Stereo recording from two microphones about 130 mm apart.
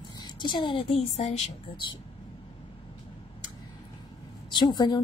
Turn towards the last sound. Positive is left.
turn(degrees=30)  # may be behind; listen again after turning